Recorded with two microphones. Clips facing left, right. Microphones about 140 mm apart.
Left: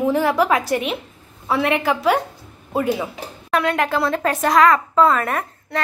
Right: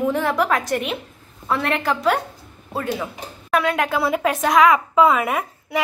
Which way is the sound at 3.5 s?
Centre (ahead or behind).